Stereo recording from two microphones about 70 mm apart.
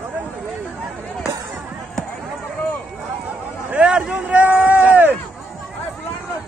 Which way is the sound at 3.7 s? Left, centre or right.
Centre.